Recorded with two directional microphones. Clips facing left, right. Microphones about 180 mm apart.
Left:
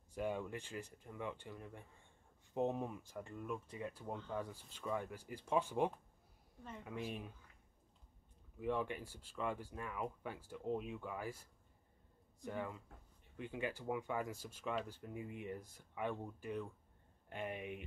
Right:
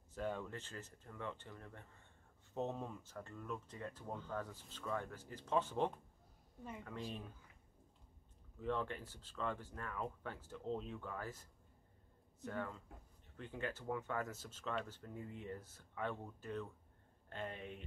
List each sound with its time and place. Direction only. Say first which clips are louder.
0.1 s speech: left 2 dB; 10° left (ahead or behind)
8.5 s speech: left 2 dB; 10° left (ahead or behind)